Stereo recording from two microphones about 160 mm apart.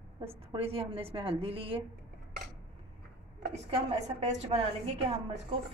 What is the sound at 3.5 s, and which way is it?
A woman's voice, 40° right (ahead or behind).